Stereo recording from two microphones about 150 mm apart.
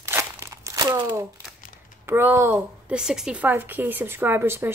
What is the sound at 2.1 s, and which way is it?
Speech, 15° right (ahead or behind).